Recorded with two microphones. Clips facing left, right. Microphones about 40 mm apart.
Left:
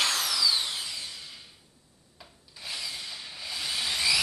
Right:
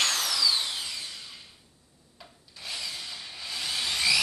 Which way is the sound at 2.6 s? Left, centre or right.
Centre.